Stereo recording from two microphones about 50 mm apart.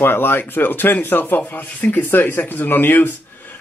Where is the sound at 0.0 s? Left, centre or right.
Left.